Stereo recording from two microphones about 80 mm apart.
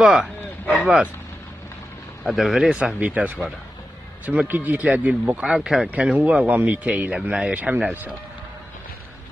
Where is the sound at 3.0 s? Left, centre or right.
Centre.